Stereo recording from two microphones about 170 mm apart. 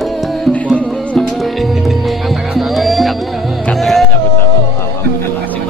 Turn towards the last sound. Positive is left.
turn(degrees=0)  # may be behind; listen again after turning